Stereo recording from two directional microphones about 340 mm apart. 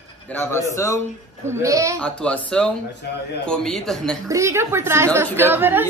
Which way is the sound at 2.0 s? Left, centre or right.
Centre.